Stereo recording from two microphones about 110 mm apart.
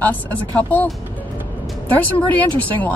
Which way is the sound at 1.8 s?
15° left (ahead or behind).